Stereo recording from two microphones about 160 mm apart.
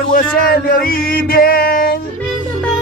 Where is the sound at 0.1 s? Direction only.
65° left (ahead or behind).